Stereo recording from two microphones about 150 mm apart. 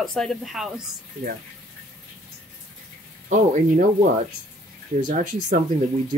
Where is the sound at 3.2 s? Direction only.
55° right (ahead or behind).